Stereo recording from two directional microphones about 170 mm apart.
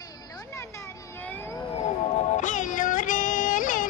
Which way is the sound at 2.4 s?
50° left (ahead or behind).